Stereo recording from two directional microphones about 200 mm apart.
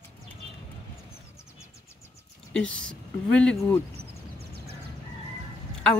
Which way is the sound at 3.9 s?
55° right (ahead or behind).